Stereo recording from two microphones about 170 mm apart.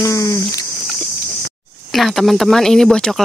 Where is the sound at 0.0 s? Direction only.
20° left (ahead or behind).